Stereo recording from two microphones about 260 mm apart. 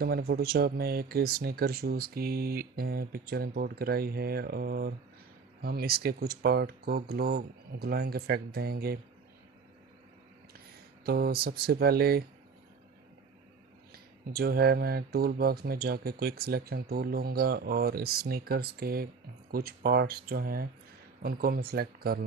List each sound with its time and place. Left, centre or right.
0.0 s speech: right
11.1 s speech: right
13.9 s speech: right